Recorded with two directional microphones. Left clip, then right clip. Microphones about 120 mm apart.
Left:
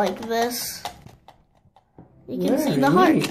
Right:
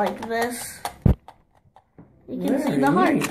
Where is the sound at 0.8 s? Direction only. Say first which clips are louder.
Right 2 dB; 50° right (ahead or behind).